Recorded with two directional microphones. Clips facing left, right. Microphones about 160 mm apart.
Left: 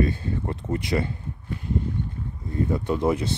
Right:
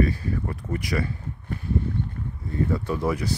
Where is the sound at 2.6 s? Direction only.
20° left (ahead or behind).